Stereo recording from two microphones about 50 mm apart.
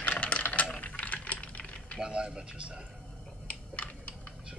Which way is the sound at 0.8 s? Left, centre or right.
Left.